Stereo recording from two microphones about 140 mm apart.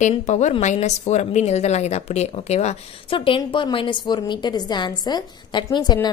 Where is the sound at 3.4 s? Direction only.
35° left (ahead or behind).